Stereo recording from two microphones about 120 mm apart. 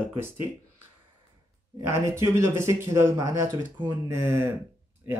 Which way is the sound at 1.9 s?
25° right (ahead or behind).